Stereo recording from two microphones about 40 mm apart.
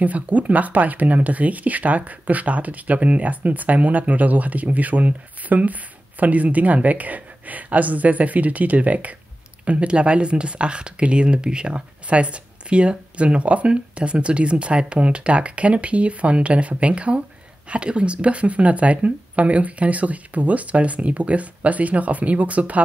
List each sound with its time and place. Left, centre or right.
0.0 s speech: right
9.7 s speech: right